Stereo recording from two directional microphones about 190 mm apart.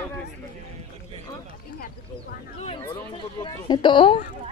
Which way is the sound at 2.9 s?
25° left (ahead or behind).